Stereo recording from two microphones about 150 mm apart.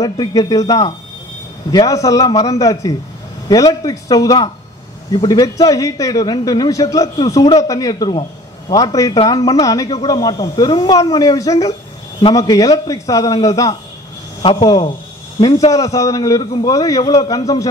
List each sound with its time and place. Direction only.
0.0 s a man's voice: 25° left (ahead or behind)
14.4 s speech: 40° left (ahead or behind)
14.7 s a man's voice: 25° left (ahead or behind)